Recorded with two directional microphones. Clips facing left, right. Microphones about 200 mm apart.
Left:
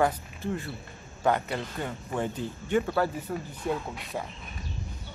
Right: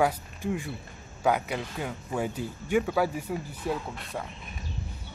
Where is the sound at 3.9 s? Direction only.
Centre (ahead or behind).